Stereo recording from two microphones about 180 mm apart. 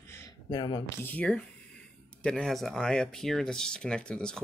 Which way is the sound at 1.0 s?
10° left (ahead or behind).